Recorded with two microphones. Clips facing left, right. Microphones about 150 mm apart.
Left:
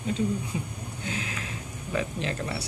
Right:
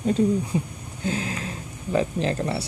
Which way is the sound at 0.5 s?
35° right (ahead or behind).